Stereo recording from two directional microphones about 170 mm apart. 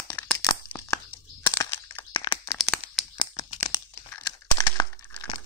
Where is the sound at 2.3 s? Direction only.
15° left (ahead or behind).